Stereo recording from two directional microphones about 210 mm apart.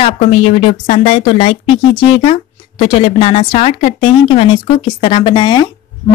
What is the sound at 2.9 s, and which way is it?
Speech, 25° left (ahead or behind).